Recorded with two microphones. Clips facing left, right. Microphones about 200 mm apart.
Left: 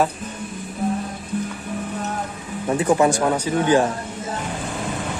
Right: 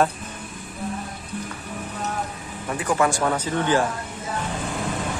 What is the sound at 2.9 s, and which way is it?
Speech, 20° left (ahead or behind).